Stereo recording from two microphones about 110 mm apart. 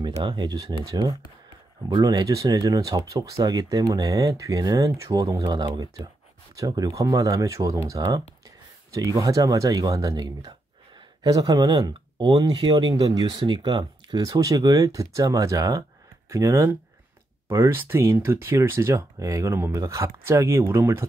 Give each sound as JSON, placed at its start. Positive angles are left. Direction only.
{"t": 0.2, "sound": "speech", "side_deg": -45}
{"t": 14.3, "sound": "speech", "side_deg": -35}